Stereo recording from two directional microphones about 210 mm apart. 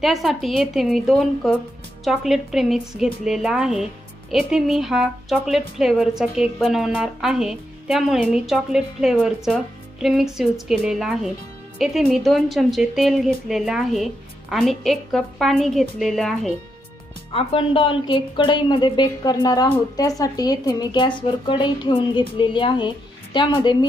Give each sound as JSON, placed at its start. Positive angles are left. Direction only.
{"t": 0.0, "sound": "a woman's voice", "side_deg": 0}
{"t": 17.3, "sound": "a woman's voice", "side_deg": 25}